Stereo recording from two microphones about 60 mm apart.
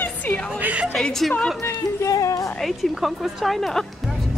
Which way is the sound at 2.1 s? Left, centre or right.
Left.